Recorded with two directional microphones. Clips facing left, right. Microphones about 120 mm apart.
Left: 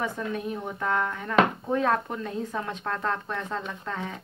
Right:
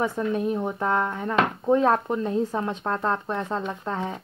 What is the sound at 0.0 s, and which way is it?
Speech, 30° right (ahead or behind).